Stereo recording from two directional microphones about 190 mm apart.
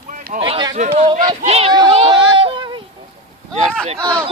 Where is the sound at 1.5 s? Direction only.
35° right (ahead or behind).